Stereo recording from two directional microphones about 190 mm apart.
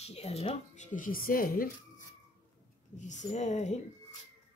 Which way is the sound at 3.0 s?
40° left (ahead or behind).